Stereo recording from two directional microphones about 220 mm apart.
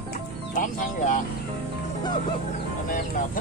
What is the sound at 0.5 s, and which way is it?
Speech, 35° left (ahead or behind).